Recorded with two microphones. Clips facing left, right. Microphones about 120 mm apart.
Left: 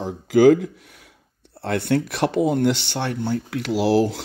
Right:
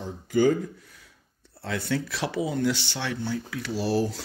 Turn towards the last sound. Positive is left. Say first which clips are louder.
# left 7 dB
turn(degrees=90)